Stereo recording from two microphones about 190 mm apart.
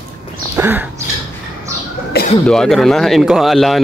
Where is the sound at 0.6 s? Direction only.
10° right (ahead or behind).